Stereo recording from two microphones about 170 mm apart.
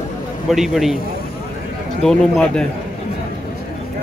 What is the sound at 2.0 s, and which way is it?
Speech, 5° left (ahead or behind).